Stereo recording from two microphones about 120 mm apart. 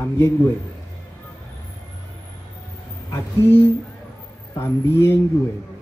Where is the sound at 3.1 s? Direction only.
20° left (ahead or behind).